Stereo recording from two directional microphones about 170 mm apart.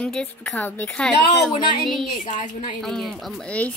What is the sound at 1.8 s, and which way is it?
Speech, centre (ahead or behind).